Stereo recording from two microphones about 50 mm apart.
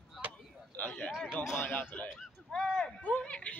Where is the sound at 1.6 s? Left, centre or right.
Left.